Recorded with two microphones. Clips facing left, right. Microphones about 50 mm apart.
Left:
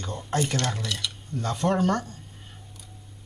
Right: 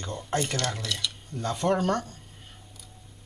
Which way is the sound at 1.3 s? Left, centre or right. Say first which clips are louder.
Left 1 dB; centre.